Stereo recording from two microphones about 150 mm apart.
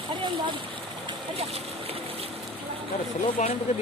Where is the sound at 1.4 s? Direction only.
45° right (ahead or behind).